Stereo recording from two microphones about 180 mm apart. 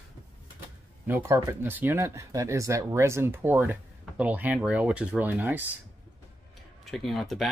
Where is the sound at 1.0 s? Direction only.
15° right (ahead or behind).